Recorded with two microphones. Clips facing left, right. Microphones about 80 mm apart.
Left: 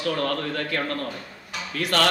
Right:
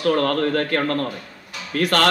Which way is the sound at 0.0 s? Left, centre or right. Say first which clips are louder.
Right 7 dB; right.